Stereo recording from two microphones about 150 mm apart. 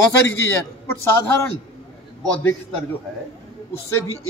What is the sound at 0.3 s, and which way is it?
Speech, 15° left (ahead or behind).